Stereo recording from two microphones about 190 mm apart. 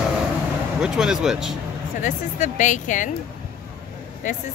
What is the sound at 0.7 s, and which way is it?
Speech, 5° right (ahead or behind).